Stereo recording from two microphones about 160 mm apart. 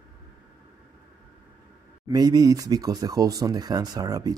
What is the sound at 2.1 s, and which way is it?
Speech, 25° right (ahead or behind).